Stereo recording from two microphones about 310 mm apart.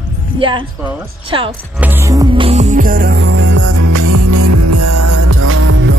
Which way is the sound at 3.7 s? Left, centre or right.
Right.